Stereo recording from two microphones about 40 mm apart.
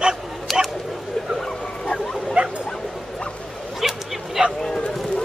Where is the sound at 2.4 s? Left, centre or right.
Right.